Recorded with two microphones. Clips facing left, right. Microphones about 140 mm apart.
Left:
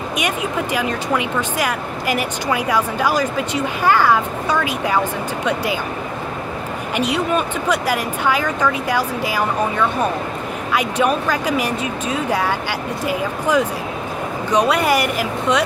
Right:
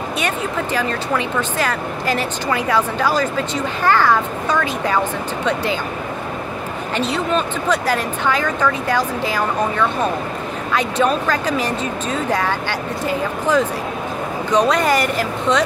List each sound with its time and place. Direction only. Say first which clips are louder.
0.2 s speech: left 1 dB; 10° left (ahead or behind)
7.0 s speech: left 1 dB; 10° left (ahead or behind)